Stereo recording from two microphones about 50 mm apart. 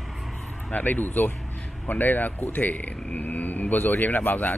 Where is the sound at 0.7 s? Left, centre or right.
Left.